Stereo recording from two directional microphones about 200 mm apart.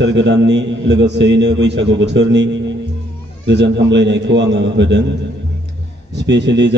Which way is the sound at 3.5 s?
60° right (ahead or behind).